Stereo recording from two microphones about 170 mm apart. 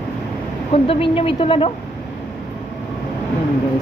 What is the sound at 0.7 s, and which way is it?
A woman's voice, 35° left (ahead or behind).